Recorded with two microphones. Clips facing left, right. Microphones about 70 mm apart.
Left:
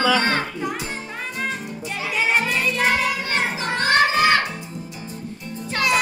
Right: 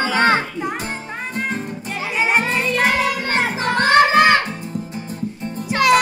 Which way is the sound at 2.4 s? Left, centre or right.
Right.